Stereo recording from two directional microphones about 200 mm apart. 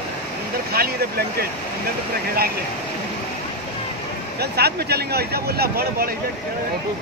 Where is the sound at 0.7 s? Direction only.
50° right (ahead or behind).